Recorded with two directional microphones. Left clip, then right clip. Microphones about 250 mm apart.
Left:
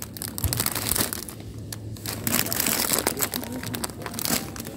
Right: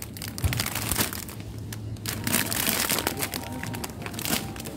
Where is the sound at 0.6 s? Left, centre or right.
Centre.